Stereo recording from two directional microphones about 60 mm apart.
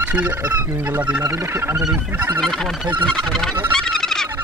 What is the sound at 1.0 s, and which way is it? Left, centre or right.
Speech, right.